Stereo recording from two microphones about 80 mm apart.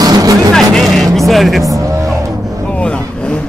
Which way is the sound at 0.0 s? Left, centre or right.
Right.